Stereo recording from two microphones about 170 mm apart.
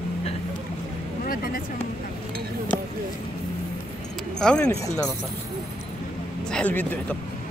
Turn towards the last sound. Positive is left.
turn(degrees=10)  # may be behind; listen again after turning